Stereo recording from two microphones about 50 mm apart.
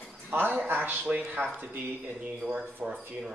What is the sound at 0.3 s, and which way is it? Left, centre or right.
Speech, right.